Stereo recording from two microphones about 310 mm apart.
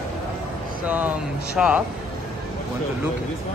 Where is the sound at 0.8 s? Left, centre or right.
Centre.